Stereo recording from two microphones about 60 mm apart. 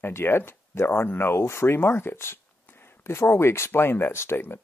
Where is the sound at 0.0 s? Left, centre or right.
Left.